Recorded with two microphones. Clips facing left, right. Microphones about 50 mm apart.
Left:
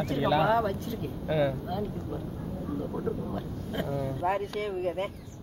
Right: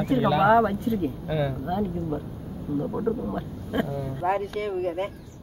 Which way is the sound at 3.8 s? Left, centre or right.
Centre.